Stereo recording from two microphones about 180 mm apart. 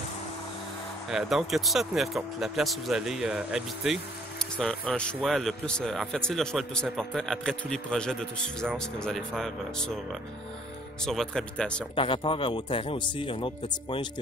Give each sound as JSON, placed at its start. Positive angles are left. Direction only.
{"t": 1.1, "sound": "speech", "side_deg": 0}
{"t": 11.1, "sound": "speech", "side_deg": 5}
{"t": 11.9, "sound": "speech", "side_deg": 30}